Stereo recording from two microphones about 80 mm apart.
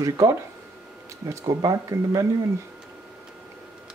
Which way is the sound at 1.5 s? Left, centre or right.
Right.